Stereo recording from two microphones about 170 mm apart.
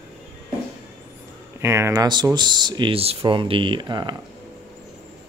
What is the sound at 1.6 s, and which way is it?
Speech, 15° right (ahead or behind).